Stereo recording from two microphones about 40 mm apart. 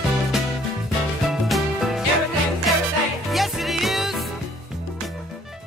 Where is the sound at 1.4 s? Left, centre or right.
Centre.